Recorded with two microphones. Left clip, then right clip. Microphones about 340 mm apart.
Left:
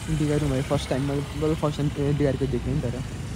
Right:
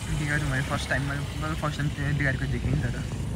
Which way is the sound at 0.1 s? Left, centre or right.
Centre.